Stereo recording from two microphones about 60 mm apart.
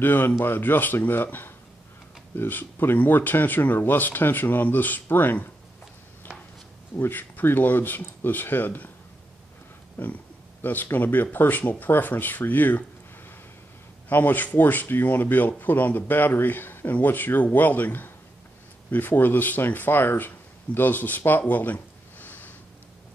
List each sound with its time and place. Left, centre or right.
0.0 s speech: left
7.0 s speech: left
10.0 s speech: left
14.0 s speech: left
21.3 s a sound: left